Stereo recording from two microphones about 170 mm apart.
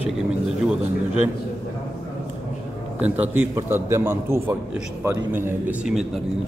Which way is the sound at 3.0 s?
10° right (ahead or behind).